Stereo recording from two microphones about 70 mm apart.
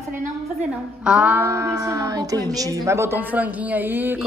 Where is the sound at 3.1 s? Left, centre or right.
Right.